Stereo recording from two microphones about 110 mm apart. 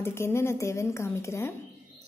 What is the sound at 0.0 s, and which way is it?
A woman's voice, 25° left (ahead or behind).